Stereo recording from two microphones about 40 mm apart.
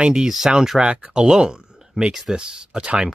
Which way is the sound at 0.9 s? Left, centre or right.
Right.